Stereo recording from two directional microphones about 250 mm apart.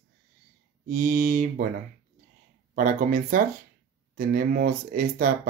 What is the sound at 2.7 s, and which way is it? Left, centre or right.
Speech, right.